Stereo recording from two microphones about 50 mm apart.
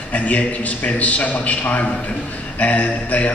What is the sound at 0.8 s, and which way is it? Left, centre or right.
A man's voice, left.